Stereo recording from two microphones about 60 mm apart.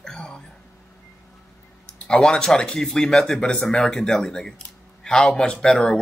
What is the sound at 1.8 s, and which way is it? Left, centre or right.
Speech, centre.